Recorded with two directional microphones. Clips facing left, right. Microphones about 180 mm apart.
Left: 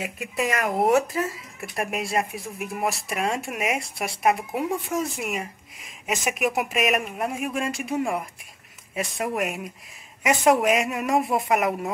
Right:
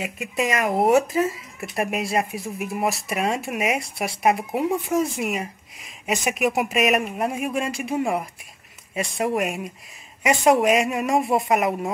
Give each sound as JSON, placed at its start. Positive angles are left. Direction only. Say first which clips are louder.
{"t": 0.4, "sound": "speech", "louder": "right 2 dB", "side_deg": -15}
{"t": 0.7, "sound": "speech", "louder": "right 2 dB", "side_deg": 0}